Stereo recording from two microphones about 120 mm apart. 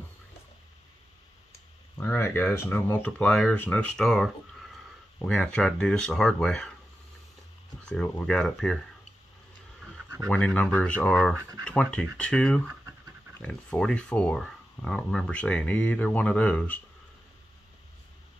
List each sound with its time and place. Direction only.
2.0 s speech: 20° left (ahead or behind)
3.9 s speech: 5° left (ahead or behind)
7.8 s speech: 10° left (ahead or behind)
10.3 s speech: 10° left (ahead or behind)